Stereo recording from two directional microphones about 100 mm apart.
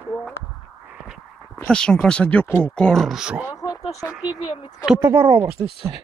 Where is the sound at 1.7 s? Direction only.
10° left (ahead or behind).